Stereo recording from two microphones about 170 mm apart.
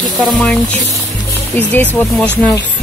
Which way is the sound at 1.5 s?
10° left (ahead or behind).